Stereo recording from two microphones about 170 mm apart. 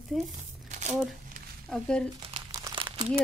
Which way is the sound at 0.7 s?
45° right (ahead or behind).